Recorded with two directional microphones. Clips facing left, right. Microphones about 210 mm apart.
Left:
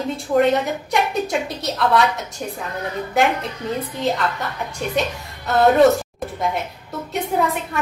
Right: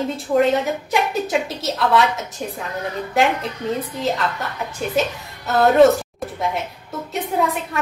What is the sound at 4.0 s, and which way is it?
A woman's voice, centre (ahead or behind).